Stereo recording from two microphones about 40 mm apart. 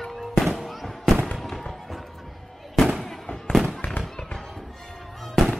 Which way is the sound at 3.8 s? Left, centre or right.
Left.